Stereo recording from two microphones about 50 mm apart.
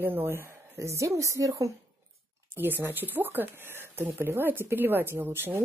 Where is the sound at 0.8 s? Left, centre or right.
Right.